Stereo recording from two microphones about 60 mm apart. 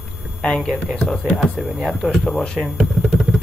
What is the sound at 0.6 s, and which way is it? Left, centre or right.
Speech, centre.